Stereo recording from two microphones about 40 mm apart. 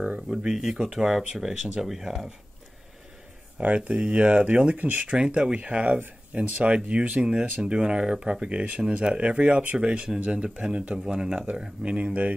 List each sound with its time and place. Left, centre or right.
0.3 s speech: centre
3.6 s speech: right
3.9 s speech: right
4.7 s speech: right
5.0 s speech: right